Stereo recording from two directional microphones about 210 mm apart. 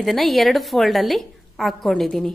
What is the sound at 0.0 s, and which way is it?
A woman's voice, centre (ahead or behind).